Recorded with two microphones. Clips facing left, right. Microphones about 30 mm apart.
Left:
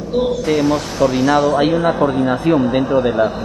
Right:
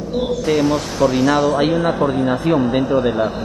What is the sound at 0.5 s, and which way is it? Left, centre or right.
Speech, centre.